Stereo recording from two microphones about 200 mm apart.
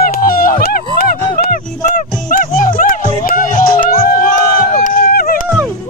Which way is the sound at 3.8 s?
45° left (ahead or behind).